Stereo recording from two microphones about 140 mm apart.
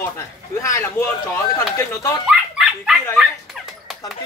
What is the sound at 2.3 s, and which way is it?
Dog, 5° right (ahead or behind).